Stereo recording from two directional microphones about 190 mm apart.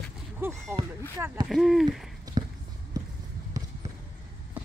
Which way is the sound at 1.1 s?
10° right (ahead or behind).